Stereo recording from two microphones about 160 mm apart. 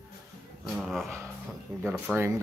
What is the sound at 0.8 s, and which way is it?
Speech, centre (ahead or behind).